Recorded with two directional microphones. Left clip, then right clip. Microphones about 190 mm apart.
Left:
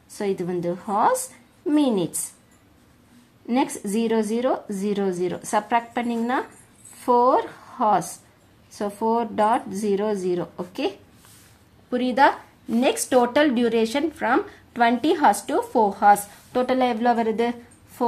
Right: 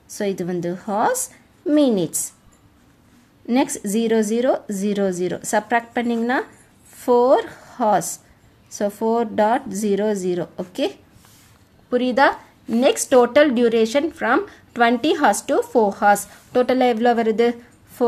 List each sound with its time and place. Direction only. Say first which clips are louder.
0.1 s a woman's voice: right 2 dB; 30° right (ahead or behind)
3.4 s a woman's voice: right 3 dB; 30° right (ahead or behind)
11.9 s speech: right 2 dB; 15° right (ahead or behind)